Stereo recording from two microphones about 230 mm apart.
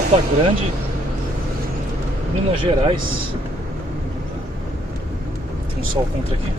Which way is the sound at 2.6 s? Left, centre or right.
Right.